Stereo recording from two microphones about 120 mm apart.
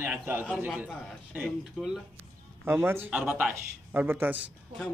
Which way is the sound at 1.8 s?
Centre (ahead or behind).